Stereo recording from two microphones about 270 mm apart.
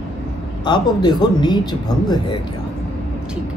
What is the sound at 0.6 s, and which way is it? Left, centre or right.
A man's voice, centre.